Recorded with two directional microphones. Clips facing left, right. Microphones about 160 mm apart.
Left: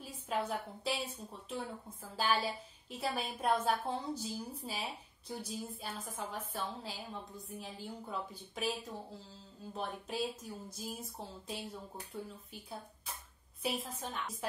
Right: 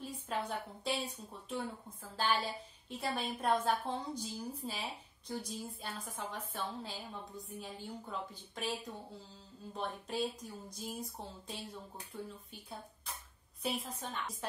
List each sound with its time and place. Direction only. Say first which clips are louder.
0.0 s a woman's voice: left 2 dB; 5° left (ahead or behind)
2.9 s speech: even; 5° left (ahead or behind)
13.6 s speech: left 1 dB; centre (ahead or behind)